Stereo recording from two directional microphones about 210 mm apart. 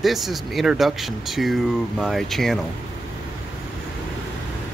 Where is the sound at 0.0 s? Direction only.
Centre (ahead or behind).